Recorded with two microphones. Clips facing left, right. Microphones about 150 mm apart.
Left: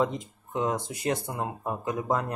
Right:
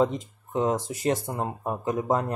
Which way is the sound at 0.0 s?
30° right (ahead or behind).